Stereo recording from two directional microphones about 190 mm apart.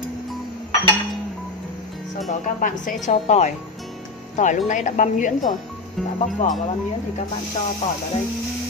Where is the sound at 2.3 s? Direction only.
45° left (ahead or behind).